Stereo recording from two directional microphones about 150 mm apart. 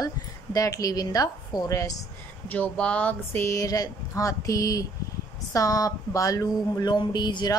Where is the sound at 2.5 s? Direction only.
10° left (ahead or behind).